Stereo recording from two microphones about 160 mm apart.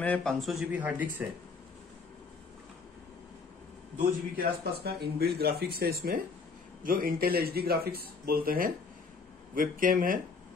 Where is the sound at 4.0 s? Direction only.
65° right (ahead or behind).